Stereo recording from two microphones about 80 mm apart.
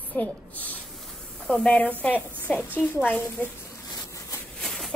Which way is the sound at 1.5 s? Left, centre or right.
Centre.